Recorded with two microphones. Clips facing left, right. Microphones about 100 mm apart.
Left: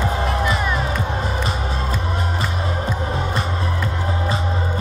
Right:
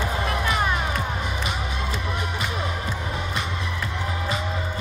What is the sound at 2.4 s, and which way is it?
Music, 35° left (ahead or behind).